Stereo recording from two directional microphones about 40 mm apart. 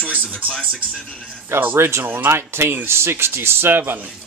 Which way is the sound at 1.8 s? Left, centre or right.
Right.